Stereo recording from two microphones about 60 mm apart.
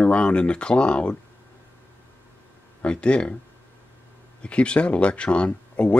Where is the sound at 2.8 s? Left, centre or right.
Centre.